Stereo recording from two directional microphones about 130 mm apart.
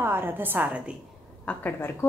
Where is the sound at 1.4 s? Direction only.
10° left (ahead or behind).